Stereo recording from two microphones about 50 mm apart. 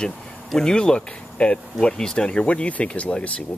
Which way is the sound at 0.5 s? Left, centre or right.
Centre.